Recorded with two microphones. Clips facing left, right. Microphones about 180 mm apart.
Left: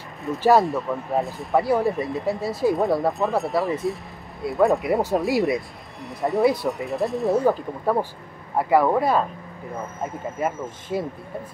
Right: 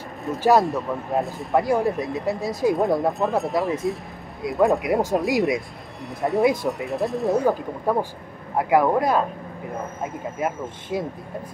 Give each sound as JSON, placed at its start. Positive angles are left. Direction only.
{"t": 0.5, "sound": "speech", "side_deg": 0}
{"t": 8.5, "sound": "speech", "side_deg": 0}
{"t": 10.4, "sound": "speech", "side_deg": -10}